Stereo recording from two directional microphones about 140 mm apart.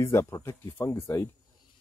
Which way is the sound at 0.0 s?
20° left (ahead or behind).